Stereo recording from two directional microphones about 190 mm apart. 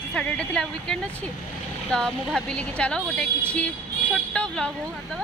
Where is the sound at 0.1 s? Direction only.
5° left (ahead or behind).